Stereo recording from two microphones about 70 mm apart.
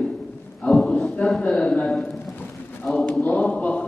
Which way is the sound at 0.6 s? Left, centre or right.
Centre.